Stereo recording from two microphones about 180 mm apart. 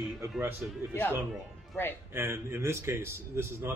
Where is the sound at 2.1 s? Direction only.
15° right (ahead or behind).